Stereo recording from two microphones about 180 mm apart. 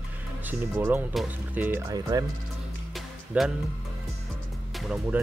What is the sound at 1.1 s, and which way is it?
Speech, centre (ahead or behind).